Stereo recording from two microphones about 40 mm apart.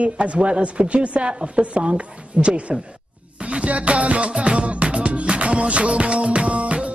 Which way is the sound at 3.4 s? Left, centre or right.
Right.